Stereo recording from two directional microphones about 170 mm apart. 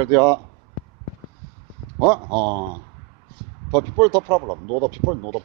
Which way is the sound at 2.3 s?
10° left (ahead or behind).